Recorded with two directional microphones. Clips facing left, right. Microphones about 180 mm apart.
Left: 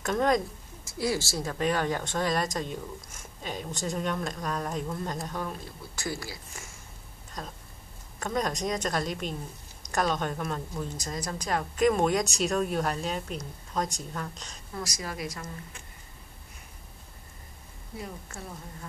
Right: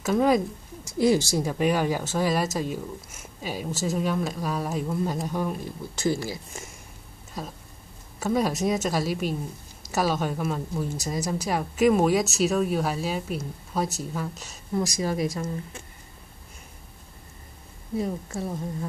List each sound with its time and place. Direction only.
0.0 s a woman's voice: 5° right (ahead or behind)
0.9 s speech: 20° right (ahead or behind)
6.0 s speech: 20° right (ahead or behind)
7.4 s a woman's voice: 10° right (ahead or behind)
14.7 s speech: 25° right (ahead or behind)